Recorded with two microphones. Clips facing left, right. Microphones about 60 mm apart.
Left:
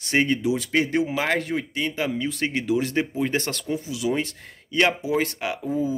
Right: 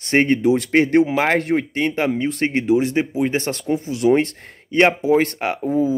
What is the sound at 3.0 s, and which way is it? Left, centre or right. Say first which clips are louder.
Speech: right 4 dB; centre.